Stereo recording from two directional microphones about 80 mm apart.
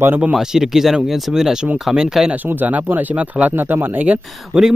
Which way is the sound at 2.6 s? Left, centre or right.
Right.